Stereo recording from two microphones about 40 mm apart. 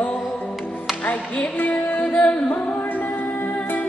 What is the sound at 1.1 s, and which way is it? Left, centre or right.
Music, left.